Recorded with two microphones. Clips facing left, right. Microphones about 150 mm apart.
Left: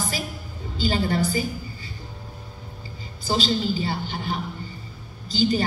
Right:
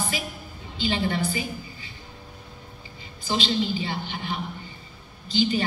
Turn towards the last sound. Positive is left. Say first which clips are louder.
# left 2 dB
turn(degrees=40)  # may be behind; listen again after turning